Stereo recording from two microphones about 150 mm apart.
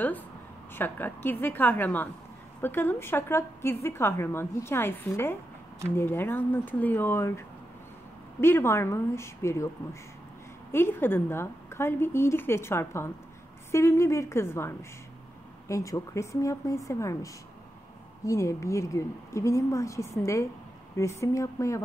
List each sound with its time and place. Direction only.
0.7 s a woman's voice: 15° left (ahead or behind)
10.7 s a woman's voice: 15° left (ahead or behind)